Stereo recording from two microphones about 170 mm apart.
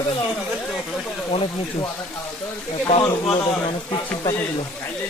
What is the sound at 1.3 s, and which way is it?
Speech, 35° left (ahead or behind).